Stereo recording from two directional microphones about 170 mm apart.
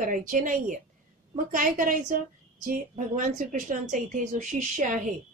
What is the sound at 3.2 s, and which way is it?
Speech, 45° right (ahead or behind).